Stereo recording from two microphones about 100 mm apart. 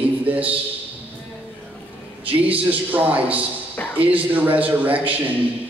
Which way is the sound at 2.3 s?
15° right (ahead or behind).